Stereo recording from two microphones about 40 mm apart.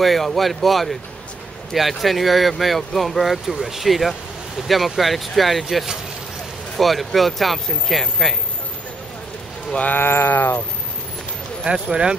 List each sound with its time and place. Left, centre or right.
0.0 s speech: centre
9.9 s a sound: left
11.6 s speech: centre